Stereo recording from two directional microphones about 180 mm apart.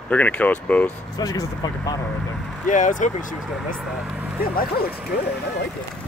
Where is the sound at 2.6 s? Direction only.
45° left (ahead or behind).